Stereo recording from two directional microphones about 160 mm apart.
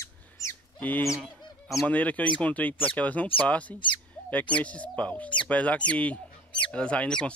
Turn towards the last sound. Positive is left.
turn(degrees=5)  # may be behind; listen again after turning